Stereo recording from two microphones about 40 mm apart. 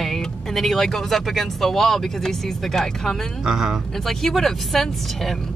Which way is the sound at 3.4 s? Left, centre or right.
Centre.